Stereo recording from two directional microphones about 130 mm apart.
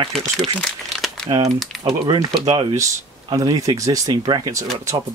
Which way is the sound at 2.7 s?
25° right (ahead or behind).